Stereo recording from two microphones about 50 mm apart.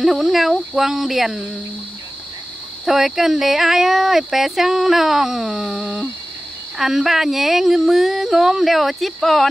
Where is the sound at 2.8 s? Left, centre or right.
Centre.